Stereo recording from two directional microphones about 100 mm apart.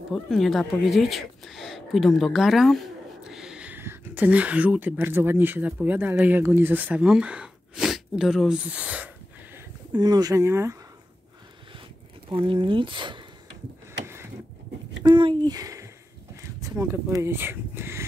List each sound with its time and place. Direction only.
0.1 s speech: centre (ahead or behind)
9.9 s speech: 40° right (ahead or behind)
12.3 s speech: 55° right (ahead or behind)
14.0 s a sound: 25° right (ahead or behind)
15.0 s speech: 50° right (ahead or behind); by 18.0 s 25° right (ahead or behind)